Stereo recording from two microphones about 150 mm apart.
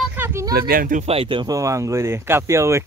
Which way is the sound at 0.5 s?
75° right (ahead or behind).